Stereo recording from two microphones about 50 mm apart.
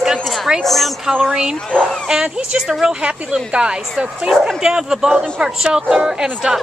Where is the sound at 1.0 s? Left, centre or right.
Centre.